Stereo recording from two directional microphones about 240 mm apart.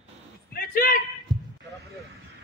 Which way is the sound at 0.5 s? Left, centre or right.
Left.